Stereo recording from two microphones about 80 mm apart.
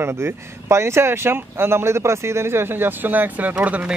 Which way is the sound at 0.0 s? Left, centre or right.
Right.